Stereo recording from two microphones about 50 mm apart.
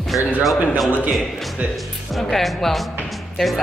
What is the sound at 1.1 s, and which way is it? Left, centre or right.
Speech, centre.